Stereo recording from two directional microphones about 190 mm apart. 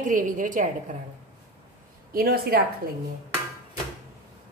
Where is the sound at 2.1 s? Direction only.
50° right (ahead or behind).